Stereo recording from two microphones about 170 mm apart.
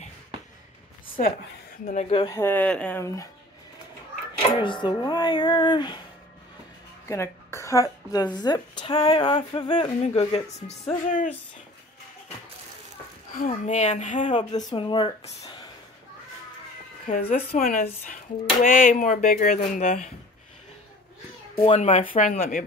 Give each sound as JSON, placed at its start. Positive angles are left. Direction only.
{"t": 1.9, "sound": "speech", "side_deg": 40}
{"t": 2.2, "sound": "speech", "side_deg": 15}
{"t": 4.6, "sound": "speech", "side_deg": 30}
{"t": 7.1, "sound": "a woman's voice", "side_deg": 15}
{"t": 10.0, "sound": "speech", "side_deg": 40}
{"t": 11.1, "sound": "speech", "side_deg": 50}
{"t": 13.4, "sound": "speech", "side_deg": 45}
{"t": 14.6, "sound": "speech", "side_deg": 25}
{"t": 17.1, "sound": "speech", "side_deg": 55}
{"t": 21.5, "sound": "speech", "side_deg": 35}